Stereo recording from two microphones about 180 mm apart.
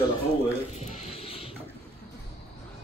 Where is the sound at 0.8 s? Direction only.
35° left (ahead or behind).